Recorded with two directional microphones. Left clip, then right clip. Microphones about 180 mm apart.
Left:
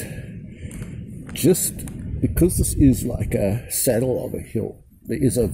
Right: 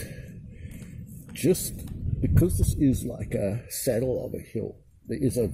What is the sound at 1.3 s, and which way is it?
Speech, centre (ahead or behind).